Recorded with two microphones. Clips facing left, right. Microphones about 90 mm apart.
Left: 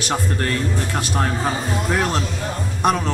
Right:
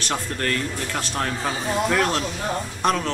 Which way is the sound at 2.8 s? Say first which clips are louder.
Left 3 dB; 10° left (ahead or behind).